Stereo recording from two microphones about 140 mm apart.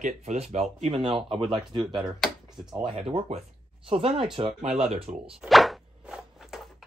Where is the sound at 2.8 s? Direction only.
40° right (ahead or behind).